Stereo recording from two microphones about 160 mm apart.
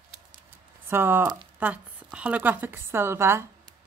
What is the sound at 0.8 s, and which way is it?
A woman's voice, 15° right (ahead or behind).